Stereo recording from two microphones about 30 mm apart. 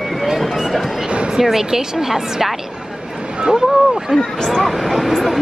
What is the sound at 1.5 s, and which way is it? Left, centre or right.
Speech, centre.